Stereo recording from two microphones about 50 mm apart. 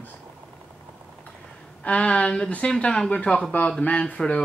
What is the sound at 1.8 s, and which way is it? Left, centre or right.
Speech, left.